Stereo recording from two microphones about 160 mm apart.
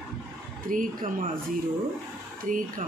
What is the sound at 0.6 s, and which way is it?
Speech, 55° right (ahead or behind).